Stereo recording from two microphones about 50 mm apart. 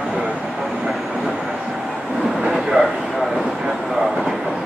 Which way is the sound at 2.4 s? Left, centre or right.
Centre.